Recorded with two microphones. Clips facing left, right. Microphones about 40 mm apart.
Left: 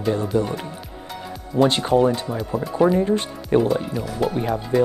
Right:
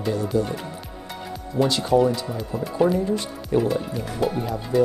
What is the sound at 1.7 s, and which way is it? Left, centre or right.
Speech, left.